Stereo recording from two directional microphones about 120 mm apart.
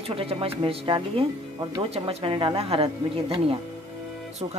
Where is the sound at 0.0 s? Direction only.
50° right (ahead or behind).